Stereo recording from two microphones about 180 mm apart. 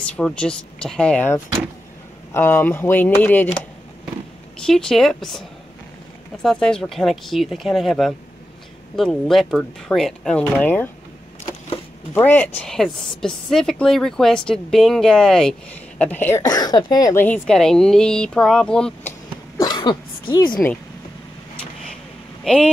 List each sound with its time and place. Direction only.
0.0 s a woman's voice: 5° left (ahead or behind)
4.6 s a woman's voice: 5° left (ahead or behind)
6.4 s a woman's voice: 5° left (ahead or behind)
12.1 s a woman's voice: 10° left (ahead or behind)
19.6 s a sound: 25° left (ahead or behind)
22.4 s speech: 5° left (ahead or behind)